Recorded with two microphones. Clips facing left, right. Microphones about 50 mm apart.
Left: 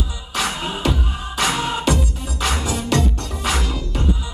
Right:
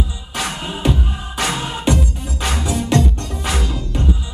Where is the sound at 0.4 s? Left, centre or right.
Right.